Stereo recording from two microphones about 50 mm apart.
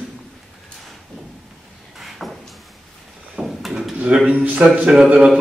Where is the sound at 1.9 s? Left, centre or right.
Centre.